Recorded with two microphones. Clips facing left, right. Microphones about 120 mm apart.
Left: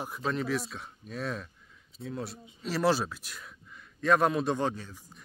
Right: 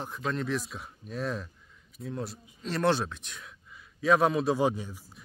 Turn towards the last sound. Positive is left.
turn(degrees=-15)  # may be behind; listen again after turning